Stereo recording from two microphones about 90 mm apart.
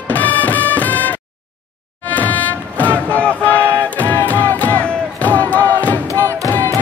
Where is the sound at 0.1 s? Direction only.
20° left (ahead or behind).